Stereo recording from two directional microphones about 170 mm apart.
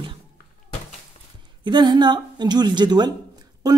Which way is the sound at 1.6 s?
25° right (ahead or behind).